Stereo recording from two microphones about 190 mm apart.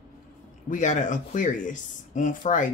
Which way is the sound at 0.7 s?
40° left (ahead or behind).